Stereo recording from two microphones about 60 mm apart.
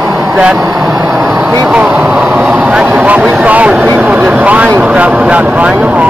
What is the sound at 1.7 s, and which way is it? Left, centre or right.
Speech, centre.